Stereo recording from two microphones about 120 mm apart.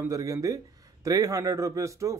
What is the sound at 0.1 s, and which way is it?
A man's voice, 25° right (ahead or behind).